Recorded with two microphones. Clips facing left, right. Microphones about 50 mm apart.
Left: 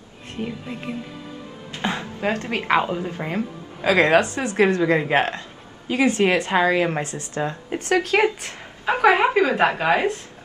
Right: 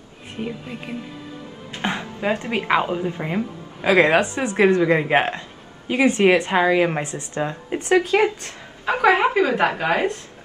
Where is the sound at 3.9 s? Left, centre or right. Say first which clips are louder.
Right 1 dB; right.